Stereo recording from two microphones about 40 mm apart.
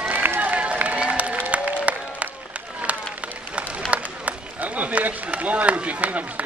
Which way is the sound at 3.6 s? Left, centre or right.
Right.